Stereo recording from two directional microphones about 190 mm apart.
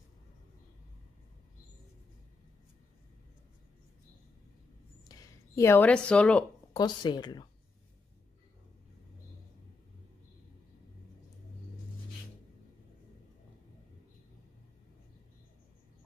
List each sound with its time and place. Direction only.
5.6 s a woman's voice: 10° left (ahead or behind)
6.7 s speech: 20° left (ahead or behind)